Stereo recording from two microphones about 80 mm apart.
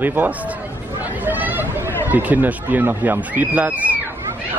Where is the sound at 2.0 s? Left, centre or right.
Right.